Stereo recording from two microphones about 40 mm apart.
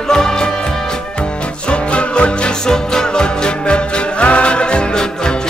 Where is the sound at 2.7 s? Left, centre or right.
Centre.